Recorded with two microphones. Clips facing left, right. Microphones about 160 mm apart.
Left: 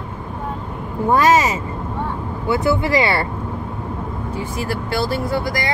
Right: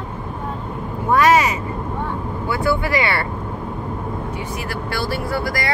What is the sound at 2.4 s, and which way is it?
Speech, 20° left (ahead or behind).